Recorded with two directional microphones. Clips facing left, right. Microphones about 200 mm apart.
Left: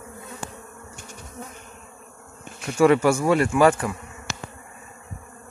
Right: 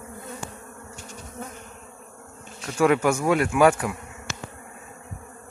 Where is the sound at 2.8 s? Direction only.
Centre (ahead or behind).